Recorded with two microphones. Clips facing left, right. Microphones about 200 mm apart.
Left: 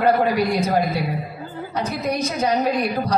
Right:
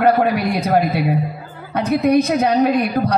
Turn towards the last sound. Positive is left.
turn(degrees=-60)  # may be behind; listen again after turning